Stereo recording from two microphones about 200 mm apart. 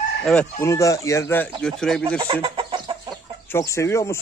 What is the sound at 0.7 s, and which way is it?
Speech, 15° left (ahead or behind).